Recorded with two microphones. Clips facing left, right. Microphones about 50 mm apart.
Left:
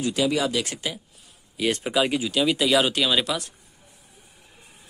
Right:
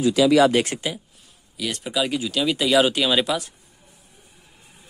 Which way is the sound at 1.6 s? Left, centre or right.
Left.